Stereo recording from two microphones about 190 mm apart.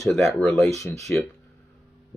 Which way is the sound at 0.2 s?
10° left (ahead or behind).